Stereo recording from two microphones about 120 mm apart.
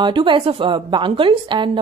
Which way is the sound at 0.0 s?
45° right (ahead or behind).